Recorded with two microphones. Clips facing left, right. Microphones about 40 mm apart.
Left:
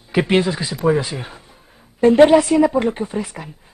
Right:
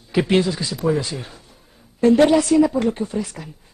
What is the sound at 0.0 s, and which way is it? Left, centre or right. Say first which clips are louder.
A woman's voice: left 1 dB; left.